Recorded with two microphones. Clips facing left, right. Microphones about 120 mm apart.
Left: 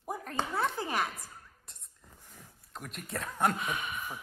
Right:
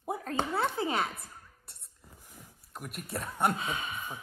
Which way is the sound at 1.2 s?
5° right (ahead or behind).